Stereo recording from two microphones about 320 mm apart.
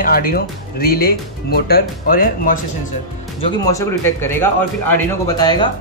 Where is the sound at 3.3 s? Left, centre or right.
Centre.